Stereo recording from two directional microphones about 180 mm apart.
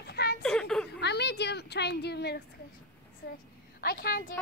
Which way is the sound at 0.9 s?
70° left (ahead or behind).